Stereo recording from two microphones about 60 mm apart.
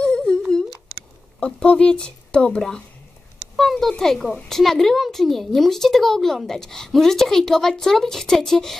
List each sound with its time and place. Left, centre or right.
0.0 s humming: centre
1.4 s speech: centre
3.5 s a sound: centre
3.9 s a woman's voice: centre